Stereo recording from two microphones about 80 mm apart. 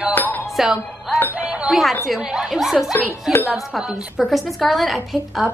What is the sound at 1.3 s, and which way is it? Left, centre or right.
Speech, centre.